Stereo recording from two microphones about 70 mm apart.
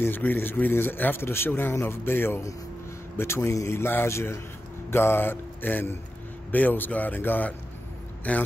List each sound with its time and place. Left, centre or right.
0.0 s speech: left